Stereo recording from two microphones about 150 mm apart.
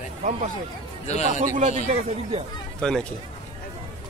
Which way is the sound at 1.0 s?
50° left (ahead or behind).